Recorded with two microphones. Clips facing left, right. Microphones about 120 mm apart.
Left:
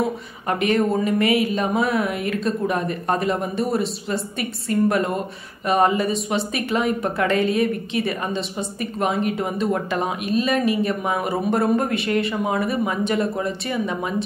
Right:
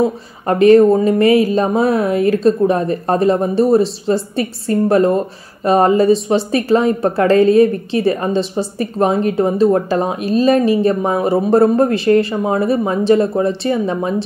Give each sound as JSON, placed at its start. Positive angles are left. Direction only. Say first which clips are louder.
{"t": 0.0, "sound": "speech", "louder": "right 7 dB", "side_deg": -35}